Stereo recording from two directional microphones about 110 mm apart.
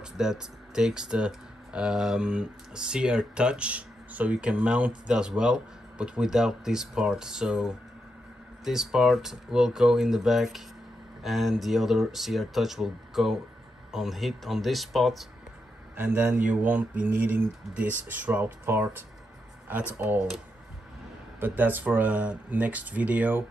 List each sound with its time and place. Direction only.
0.0 s speech: 5° right (ahead or behind)
16.0 s speech: 10° right (ahead or behind)
21.4 s speech: 15° right (ahead or behind)